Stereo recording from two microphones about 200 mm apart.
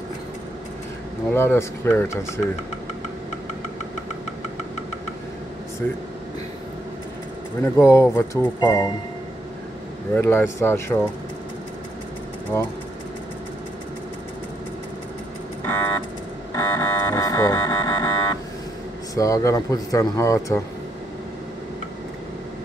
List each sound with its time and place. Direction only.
1.3 s speech: 10° left (ahead or behind)
7.6 s speech: 15° left (ahead or behind)
10.1 s speech: 10° left (ahead or behind)
12.5 s speech: 15° left (ahead or behind)
16.5 s a sound: 15° left (ahead or behind)
19.1 s speech: 15° left (ahead or behind)